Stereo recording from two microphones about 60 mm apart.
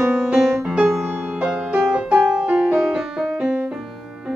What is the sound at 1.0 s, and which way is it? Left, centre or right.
Music, right.